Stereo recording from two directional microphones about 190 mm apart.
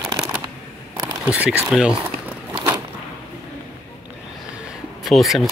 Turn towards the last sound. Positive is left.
turn(degrees=0)  # may be behind; listen again after turning